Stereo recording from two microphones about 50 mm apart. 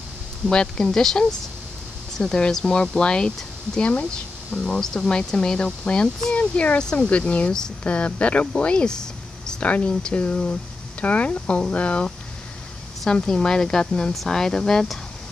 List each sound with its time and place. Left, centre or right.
0.5 s speech: centre
3.8 s speech: left
4.6 s speech: centre
6.8 s speech: centre
7.2 s speech: left
9.6 s speech: left
13.0 s speech: centre